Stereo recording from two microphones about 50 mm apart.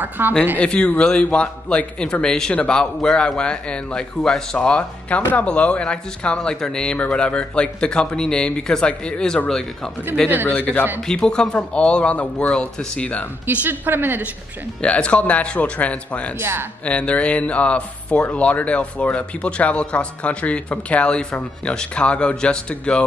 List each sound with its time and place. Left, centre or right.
0.2 s speech: right
0.6 s a man's voice: left
5.3 s a man's voice: left
10.4 s a man's voice: left
11.0 s a man's voice: centre; by 13.3 s left
13.7 s a woman's voice: right
14.8 s speech: left
16.3 s a woman's voice: right
16.8 s speech: left